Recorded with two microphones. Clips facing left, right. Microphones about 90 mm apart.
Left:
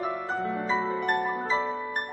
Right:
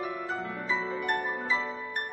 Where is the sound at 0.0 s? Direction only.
35° left (ahead or behind).